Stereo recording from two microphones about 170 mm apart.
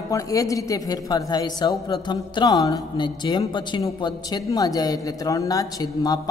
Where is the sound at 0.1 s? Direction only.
20° left (ahead or behind).